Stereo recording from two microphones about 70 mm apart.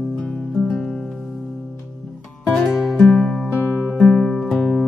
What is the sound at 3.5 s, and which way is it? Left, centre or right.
Music, left.